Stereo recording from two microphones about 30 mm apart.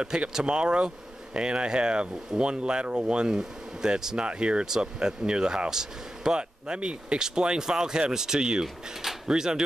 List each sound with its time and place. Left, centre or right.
0.3 s speech: right
3.3 s speech: right
4.2 s speech: right
6.3 s speech: right